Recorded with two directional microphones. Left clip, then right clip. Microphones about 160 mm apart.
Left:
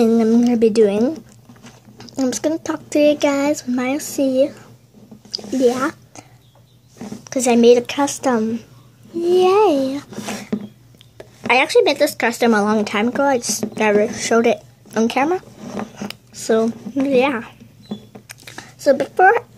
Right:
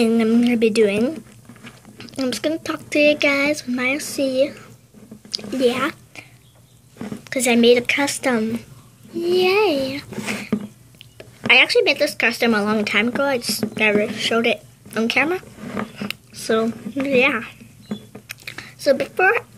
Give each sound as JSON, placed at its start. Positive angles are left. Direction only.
{"t": 0.0, "sound": "a woman's voice", "side_deg": 20}
{"t": 7.3, "sound": "a child's voice", "side_deg": 15}
{"t": 15.1, "sound": "a child's voice", "side_deg": 10}
{"t": 15.9, "sound": "a sound", "side_deg": 15}
{"t": 17.0, "sound": "a child's voice", "side_deg": 15}
{"t": 18.3, "sound": "a sound", "side_deg": 15}